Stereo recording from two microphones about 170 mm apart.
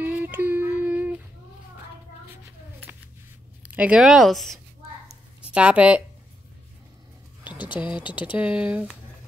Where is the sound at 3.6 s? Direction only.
10° right (ahead or behind).